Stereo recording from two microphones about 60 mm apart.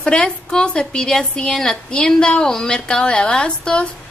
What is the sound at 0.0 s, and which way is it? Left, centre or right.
A woman's voice, centre.